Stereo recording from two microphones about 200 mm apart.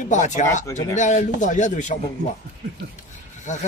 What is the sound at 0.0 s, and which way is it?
Speech, 35° left (ahead or behind).